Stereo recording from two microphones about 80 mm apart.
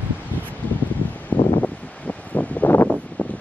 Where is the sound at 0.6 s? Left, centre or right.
Left.